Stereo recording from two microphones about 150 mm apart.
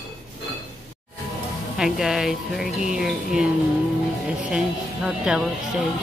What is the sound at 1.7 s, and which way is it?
Speech, 5° right (ahead or behind).